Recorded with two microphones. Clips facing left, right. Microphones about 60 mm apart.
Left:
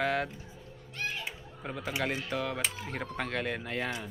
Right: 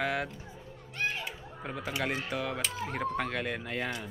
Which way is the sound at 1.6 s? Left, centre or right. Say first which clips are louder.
Even; centre.